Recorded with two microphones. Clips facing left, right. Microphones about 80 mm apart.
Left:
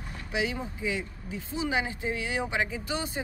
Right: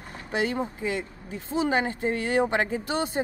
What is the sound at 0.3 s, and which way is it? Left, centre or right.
Speech, right.